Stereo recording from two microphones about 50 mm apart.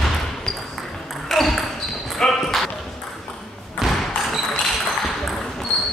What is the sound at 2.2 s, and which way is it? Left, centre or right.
Basketball bounce, centre.